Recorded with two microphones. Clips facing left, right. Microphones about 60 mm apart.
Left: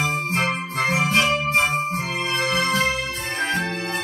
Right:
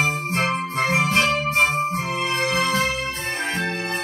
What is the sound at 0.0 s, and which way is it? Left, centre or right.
Music, left.